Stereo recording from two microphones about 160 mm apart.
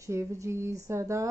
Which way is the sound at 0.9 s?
20° right (ahead or behind).